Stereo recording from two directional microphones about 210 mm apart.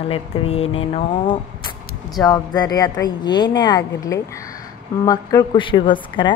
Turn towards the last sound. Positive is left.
turn(degrees=25)  # may be behind; listen again after turning